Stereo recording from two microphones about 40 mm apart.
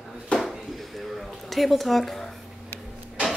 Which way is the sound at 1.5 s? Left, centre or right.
Centre.